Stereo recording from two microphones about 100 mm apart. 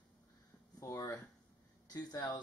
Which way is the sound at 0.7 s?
35° left (ahead or behind).